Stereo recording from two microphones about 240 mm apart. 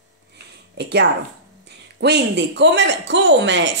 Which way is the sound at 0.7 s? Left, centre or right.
Right.